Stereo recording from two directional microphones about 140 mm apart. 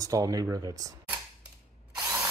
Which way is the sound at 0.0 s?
25° right (ahead or behind).